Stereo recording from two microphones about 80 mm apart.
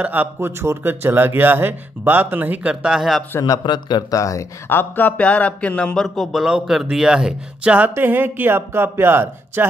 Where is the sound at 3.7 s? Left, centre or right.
Left.